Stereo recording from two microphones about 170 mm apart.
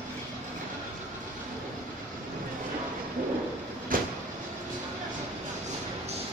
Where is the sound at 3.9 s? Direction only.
55° right (ahead or behind).